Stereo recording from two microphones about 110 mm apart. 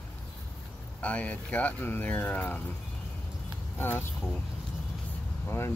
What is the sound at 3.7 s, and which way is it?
Speech, 20° left (ahead or behind).